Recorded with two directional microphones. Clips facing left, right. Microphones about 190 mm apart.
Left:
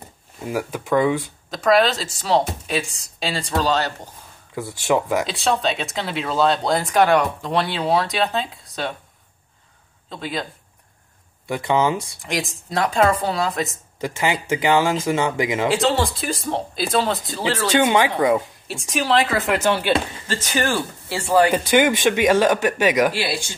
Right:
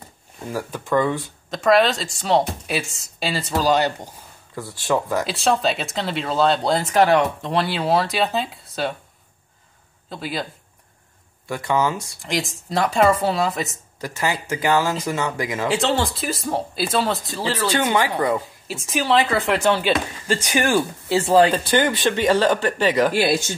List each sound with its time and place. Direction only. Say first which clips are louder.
0.5 s speech: left 2 dB; 15° left (ahead or behind)
1.5 s speech: even; centre (ahead or behind)
4.6 s speech: left 2 dB; 15° left (ahead or behind)
5.2 s speech: right 1 dB; centre (ahead or behind)
10.0 s speech: even; 5° right (ahead or behind)
11.4 s speech: left 2 dB; 20° left (ahead or behind)
12.2 s speech: right 1 dB; centre (ahead or behind)
14.0 s speech: left 2 dB; 20° left (ahead or behind)
15.7 s speech: left 1 dB; centre (ahead or behind)
17.7 s speech: left 4 dB; 10° left (ahead or behind)
18.7 s speech: even; centre (ahead or behind)
20.2 s speech: right 5 dB; 10° right (ahead or behind)
21.5 s speech: left 2 dB; 10° left (ahead or behind)
23.1 s speech: right 6 dB; 45° right (ahead or behind)